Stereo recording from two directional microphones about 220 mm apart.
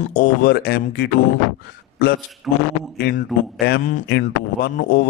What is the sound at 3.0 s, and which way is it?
A man's voice, 50° left (ahead or behind).